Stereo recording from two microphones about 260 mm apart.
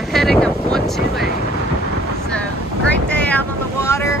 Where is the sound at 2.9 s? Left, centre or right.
Centre.